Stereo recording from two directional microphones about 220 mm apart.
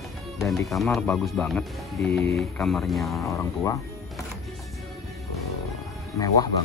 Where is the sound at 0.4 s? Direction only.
Centre (ahead or behind).